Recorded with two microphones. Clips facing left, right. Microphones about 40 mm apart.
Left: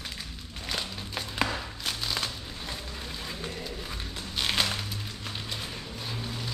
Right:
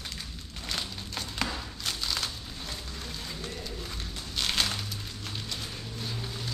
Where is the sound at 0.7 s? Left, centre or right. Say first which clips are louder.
Left 2 dB; centre.